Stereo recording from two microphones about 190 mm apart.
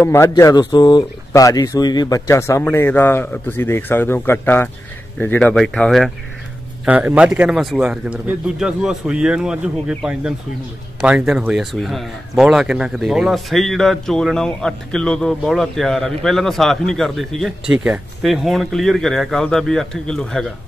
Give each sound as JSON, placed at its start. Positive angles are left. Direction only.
{"t": 0.0, "sound": "speech", "side_deg": 15}